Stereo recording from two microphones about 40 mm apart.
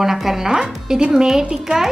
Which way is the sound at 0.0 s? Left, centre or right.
Centre.